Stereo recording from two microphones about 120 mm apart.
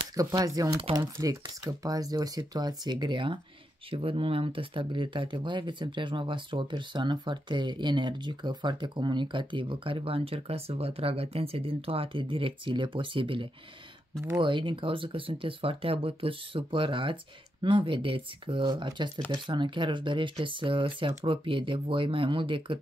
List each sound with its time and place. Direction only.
0.1 s speech: 30° right (ahead or behind); by 22.8 s 45° right (ahead or behind)